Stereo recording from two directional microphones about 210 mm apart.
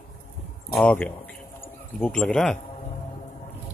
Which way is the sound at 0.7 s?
5° left (ahead or behind).